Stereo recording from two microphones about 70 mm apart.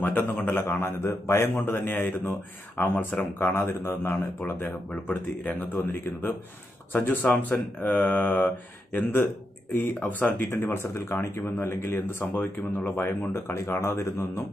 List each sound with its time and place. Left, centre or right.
0.0 s a man's voice: left
6.9 s a man's voice: left
12.4 s speech: centre
13.6 s speech: left